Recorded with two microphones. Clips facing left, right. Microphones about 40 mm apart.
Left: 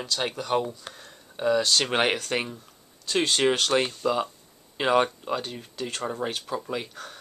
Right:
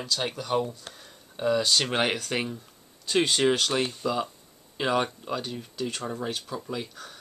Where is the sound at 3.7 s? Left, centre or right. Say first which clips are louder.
Left 3 dB; centre.